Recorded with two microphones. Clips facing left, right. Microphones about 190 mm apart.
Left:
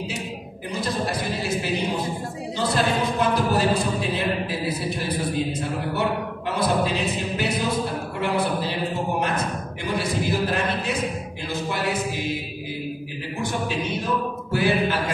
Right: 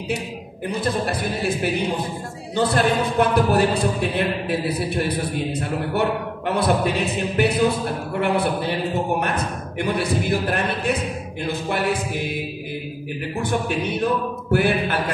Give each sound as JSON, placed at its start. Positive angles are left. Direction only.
{"t": 0.7, "sound": "a man's voice", "side_deg": -60}
{"t": 2.5, "sound": "a man's voice", "side_deg": -60}
{"t": 11.4, "sound": "music", "side_deg": -60}
{"t": 13.4, "sound": "a man's voice", "side_deg": -60}